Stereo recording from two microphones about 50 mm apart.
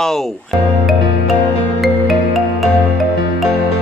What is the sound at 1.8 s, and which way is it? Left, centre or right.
Music, centre.